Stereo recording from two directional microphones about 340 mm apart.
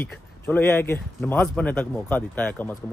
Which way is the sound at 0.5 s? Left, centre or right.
Centre.